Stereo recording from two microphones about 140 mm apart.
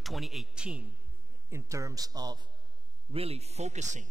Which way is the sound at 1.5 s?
20° right (ahead or behind).